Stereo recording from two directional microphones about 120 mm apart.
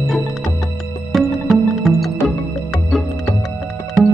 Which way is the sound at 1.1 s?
Centre (ahead or behind).